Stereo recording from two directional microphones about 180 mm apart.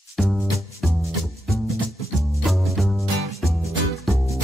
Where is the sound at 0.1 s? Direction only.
Centre (ahead or behind).